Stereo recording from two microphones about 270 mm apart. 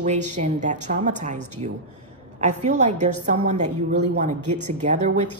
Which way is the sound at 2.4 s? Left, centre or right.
Right.